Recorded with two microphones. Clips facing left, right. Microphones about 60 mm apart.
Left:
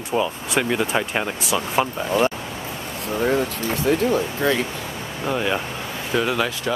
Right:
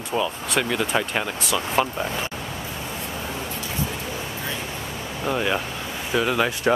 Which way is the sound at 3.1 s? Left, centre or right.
Left.